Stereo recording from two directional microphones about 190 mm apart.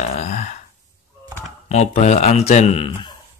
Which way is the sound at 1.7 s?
35° left (ahead or behind).